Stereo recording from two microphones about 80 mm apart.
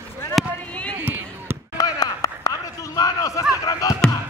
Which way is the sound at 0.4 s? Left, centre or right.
Centre.